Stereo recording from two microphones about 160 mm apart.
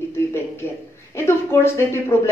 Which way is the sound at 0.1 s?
15° left (ahead or behind).